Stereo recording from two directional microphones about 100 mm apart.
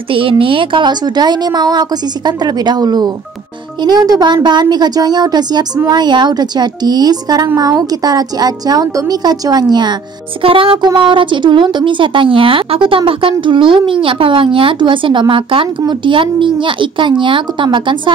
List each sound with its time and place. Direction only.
0.1 s a woman's voice: 65° right (ahead or behind); by 9.9 s 45° right (ahead or behind)
10.4 s speech: 65° right (ahead or behind)